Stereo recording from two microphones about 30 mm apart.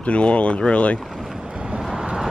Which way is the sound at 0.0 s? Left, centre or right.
Left.